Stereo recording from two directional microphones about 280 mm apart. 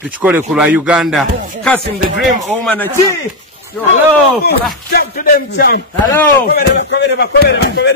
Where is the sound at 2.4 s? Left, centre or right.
Centre.